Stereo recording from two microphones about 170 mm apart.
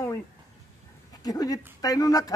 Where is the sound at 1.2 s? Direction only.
20° left (ahead or behind).